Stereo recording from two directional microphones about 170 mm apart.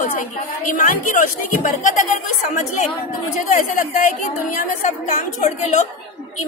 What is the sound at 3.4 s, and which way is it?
A woman's voice, 50° left (ahead or behind).